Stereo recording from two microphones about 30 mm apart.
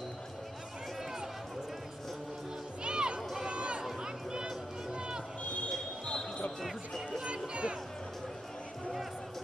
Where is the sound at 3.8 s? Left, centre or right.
Centre.